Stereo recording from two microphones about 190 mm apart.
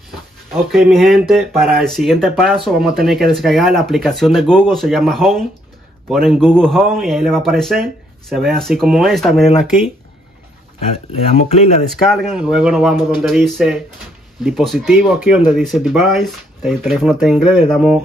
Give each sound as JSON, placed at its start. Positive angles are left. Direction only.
{"t": 0.7, "sound": "speech", "side_deg": 0}
{"t": 11.1, "sound": "speech", "side_deg": 35}
{"t": 11.9, "sound": "speech", "side_deg": 0}